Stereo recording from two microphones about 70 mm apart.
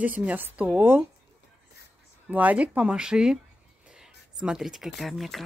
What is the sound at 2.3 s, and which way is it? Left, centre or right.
Speech, right.